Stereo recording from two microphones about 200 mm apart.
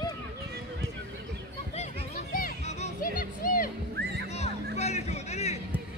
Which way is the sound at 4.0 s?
55° right (ahead or behind).